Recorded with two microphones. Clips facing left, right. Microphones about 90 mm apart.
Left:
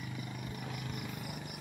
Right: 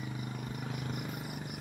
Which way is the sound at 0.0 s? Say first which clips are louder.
Right 2 dB; 30° right (ahead or behind).